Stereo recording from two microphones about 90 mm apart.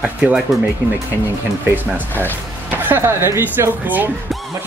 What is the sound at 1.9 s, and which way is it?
Speech, 20° right (ahead or behind).